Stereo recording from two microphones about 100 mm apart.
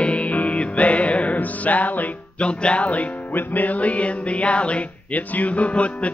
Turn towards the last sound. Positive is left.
turn(degrees=10)  # may be behind; listen again after turning